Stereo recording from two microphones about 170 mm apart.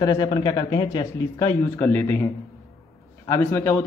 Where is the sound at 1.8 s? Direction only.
15° left (ahead or behind).